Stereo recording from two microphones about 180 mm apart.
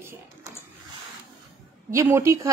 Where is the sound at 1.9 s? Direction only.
15° right (ahead or behind).